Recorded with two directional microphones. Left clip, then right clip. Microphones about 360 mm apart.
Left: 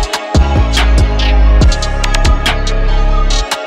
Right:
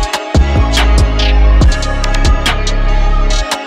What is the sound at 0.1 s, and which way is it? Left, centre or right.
Music, centre.